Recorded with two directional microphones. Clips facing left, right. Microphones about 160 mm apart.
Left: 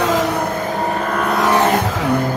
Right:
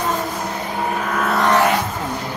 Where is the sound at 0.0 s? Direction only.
90° left; by 0.7 s 55° left (ahead or behind).